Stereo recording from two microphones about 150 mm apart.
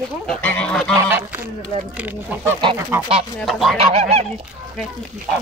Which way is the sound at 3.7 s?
45° right (ahead or behind).